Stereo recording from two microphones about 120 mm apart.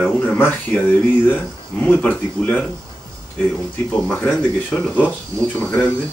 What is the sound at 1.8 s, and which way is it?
Speech, 10° left (ahead or behind).